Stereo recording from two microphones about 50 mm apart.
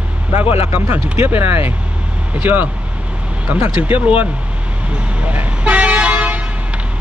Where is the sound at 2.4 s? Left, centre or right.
Right.